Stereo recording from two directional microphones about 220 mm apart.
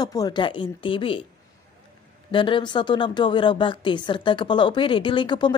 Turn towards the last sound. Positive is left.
turn(degrees=20)  # may be behind; listen again after turning